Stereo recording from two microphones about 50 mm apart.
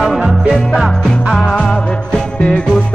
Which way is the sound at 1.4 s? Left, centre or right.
Left.